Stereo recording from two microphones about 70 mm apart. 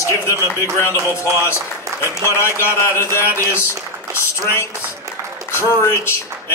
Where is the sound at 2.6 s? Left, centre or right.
Left.